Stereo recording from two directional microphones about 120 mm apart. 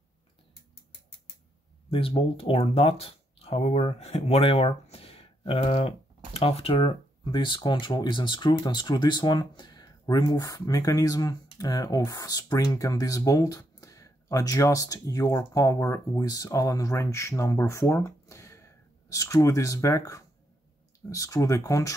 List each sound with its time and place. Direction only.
1.9 s speech: 50° left (ahead or behind); by 21.9 s 25° left (ahead or behind)